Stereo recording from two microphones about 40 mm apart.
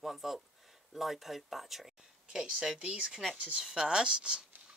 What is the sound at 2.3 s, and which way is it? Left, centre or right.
Speech, centre.